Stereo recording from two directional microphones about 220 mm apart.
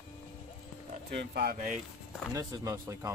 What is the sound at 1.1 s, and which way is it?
Speech, 50° right (ahead or behind).